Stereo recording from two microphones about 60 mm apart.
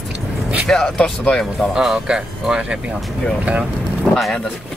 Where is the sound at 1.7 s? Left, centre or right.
Centre.